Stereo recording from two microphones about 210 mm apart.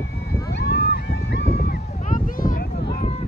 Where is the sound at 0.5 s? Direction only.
55° left (ahead or behind).